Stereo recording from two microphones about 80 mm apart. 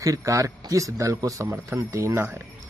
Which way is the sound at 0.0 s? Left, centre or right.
Right.